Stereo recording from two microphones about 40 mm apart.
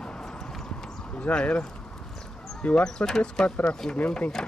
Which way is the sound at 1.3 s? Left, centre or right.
Left.